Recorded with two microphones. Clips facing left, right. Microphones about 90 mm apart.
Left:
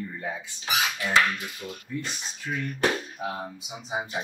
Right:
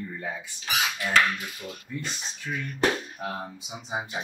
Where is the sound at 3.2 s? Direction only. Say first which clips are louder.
Left 1 dB; 5° left (ahead or behind).